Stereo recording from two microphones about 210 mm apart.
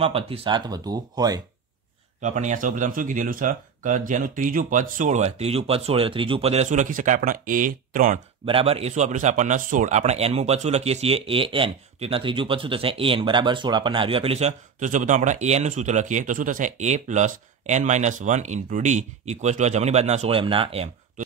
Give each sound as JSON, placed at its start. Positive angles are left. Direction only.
{"t": 0.0, "sound": "speech", "side_deg": -25}
{"t": 2.2, "sound": "a man's voice", "side_deg": -35}
{"t": 8.5, "sound": "a man's voice", "side_deg": -25}